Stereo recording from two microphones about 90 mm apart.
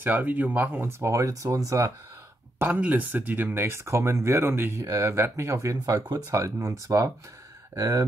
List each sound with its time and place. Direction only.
0.0 s speech: 20° right (ahead or behind); by 1.9 s 35° right (ahead or behind)
2.6 s speech: 20° right (ahead or behind)